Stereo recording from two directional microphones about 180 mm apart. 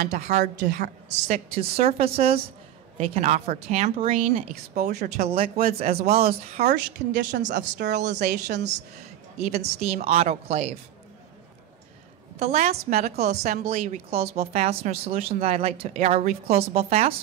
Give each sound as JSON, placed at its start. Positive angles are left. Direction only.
{"t": 0.0, "sound": "a woman's voice", "side_deg": -40}
{"t": 4.7, "sound": "speech", "side_deg": -55}
{"t": 5.1, "sound": "a woman's voice", "side_deg": -35}
{"t": 8.3, "sound": "a woman's voice", "side_deg": -70}
{"t": 9.4, "sound": "a woman's voice", "side_deg": -35}
{"t": 12.4, "sound": "a woman's voice", "side_deg": -35}